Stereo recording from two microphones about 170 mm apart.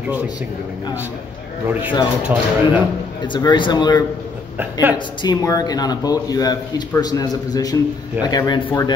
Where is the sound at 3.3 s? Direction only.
25° left (ahead or behind).